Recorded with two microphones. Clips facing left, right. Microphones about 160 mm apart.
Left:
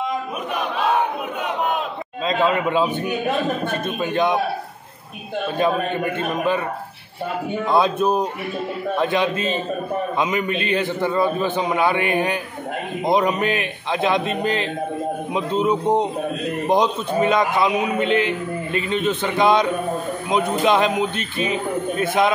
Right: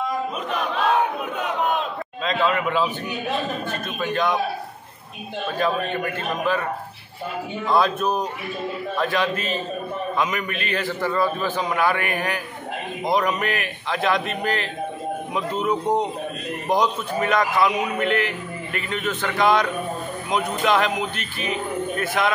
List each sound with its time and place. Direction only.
0.6 s battle cry: 5° left (ahead or behind)
2.2 s a sound: 20° left (ahead or behind)
4.0 s a man's voice: 20° left (ahead or behind)
7.7 s a man's voice: 25° left (ahead or behind)